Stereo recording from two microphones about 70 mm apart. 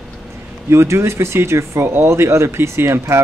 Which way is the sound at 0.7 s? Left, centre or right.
Right.